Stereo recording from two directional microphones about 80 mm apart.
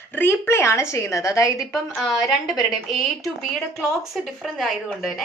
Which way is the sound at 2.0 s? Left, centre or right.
Centre.